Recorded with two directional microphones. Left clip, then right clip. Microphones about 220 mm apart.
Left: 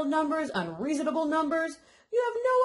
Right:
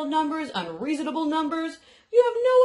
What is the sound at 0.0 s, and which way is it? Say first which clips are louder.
Speech: right 2 dB; 45° left (ahead or behind).